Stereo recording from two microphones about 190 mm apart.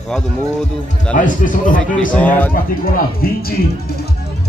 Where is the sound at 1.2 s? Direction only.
45° left (ahead or behind).